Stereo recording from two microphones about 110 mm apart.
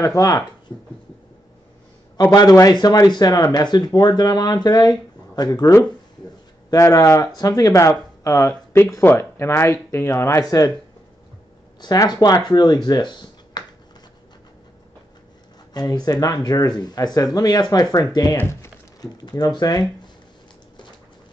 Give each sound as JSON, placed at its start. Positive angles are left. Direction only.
{"t": 0.0, "sound": "speech", "side_deg": 30}
{"t": 2.3, "sound": "speech", "side_deg": 35}
{"t": 6.7, "sound": "speech", "side_deg": 30}
{"t": 11.8, "sound": "speech", "side_deg": 35}
{"t": 12.8, "sound": "a sound", "side_deg": 40}
{"t": 15.7, "sound": "speech", "side_deg": 40}
{"t": 18.4, "sound": "speech", "side_deg": 25}
{"t": 18.9, "sound": "speech", "side_deg": 35}